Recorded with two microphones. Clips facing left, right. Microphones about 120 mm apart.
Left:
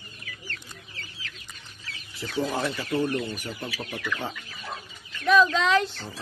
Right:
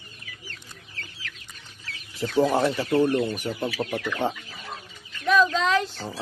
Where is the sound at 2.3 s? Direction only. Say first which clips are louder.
Right 6 dB; 35° right (ahead or behind).